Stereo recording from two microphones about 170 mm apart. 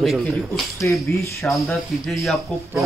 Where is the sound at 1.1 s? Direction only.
15° left (ahead or behind).